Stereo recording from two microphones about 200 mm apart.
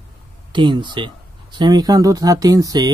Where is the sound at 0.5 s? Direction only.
25° right (ahead or behind).